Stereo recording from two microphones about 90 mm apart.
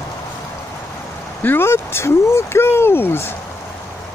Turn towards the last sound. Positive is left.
turn(degrees=25)  # may be behind; listen again after turning